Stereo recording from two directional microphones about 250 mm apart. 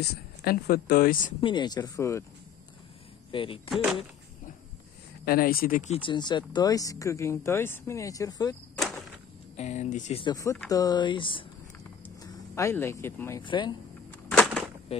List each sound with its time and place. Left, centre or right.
0.0 s speech: left
1.4 s speech: centre
3.3 s speech: left
3.7 s speech: centre
5.2 s speech: left; by 8.5 s centre
8.7 s cricket: centre
9.6 s speech: left
14.3 s a sound: centre
14.9 s speech: left